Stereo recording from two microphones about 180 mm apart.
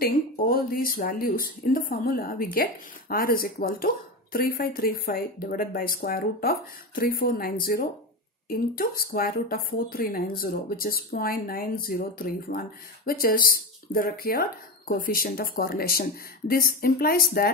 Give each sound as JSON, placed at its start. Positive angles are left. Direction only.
{"t": 0.0, "sound": "speech", "side_deg": 55}